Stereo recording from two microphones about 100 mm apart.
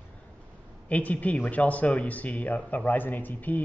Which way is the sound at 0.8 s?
15° left (ahead or behind).